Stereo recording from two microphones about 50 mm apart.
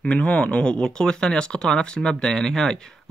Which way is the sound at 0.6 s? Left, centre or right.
Centre.